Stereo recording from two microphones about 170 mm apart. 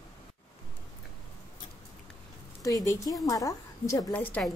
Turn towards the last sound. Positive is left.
turn(degrees=10)  # may be behind; listen again after turning